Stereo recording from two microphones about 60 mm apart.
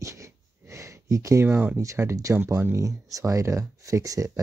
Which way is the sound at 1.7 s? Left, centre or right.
Right.